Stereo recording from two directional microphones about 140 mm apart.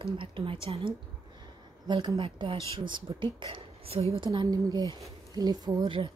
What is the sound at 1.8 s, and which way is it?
A woman's voice, 30° right (ahead or behind).